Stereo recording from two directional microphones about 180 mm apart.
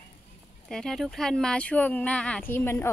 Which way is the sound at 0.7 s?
5° left (ahead or behind).